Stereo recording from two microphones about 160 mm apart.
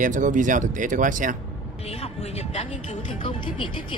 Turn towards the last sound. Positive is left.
turn(degrees=30)  # may be behind; listen again after turning